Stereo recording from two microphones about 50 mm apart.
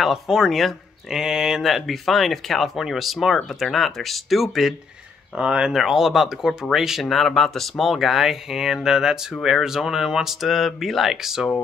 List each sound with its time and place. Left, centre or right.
0.0 s speech: centre
1.2 s speech: centre
5.3 s speech: centre
5.7 s speech: centre